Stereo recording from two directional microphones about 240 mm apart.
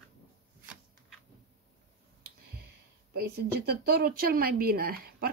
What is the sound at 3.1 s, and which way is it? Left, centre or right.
A woman's voice, right.